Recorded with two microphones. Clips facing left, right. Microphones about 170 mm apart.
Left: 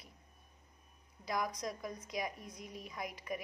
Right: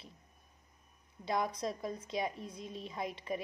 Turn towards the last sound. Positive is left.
turn(degrees=-25)  # may be behind; listen again after turning